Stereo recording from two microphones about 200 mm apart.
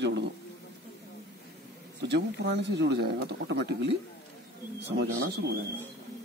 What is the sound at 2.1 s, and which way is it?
A man's voice, 60° right (ahead or behind).